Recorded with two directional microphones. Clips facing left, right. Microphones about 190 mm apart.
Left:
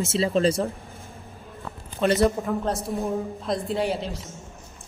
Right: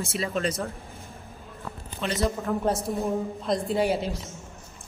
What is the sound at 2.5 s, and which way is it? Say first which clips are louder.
A woman's voice: even; centre (ahead or behind).